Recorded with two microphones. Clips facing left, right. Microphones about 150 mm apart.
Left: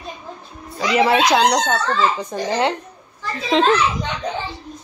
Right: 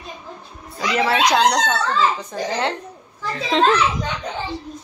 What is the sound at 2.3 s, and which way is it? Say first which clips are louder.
Speech: left 1 dB; 15° left (ahead or behind).